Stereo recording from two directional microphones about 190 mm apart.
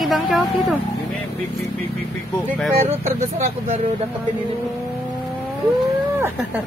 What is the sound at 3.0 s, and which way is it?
Speech, 35° right (ahead or behind).